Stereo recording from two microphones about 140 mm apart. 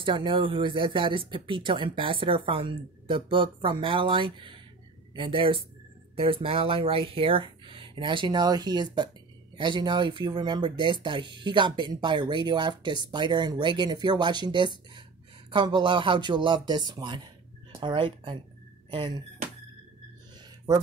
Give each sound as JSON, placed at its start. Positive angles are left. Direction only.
{"t": 0.0, "sound": "speech", "side_deg": -35}